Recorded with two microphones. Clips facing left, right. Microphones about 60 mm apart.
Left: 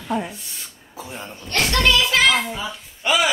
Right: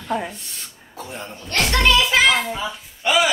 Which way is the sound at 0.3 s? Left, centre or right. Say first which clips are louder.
Even; centre.